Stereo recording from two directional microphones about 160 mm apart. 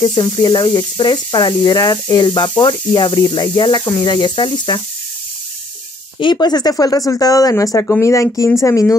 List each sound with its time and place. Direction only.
0.0 s speech: 25° left (ahead or behind)
6.1 s speech: 30° left (ahead or behind)